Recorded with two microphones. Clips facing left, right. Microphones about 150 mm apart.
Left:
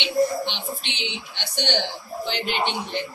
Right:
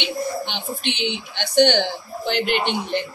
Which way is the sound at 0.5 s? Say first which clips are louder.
Right 4 dB; 55° right (ahead or behind).